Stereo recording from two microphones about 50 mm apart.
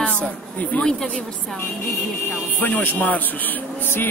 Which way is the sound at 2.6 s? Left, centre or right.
Left.